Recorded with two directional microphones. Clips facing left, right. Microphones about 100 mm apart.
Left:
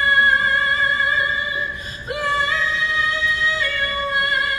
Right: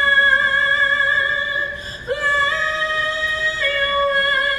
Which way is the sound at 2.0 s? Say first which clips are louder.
Right 2 dB; 35° right (ahead or behind).